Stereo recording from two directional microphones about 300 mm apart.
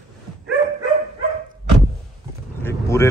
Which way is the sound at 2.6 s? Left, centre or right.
Centre.